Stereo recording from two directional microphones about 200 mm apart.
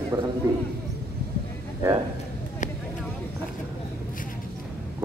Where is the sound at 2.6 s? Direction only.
40° left (ahead or behind).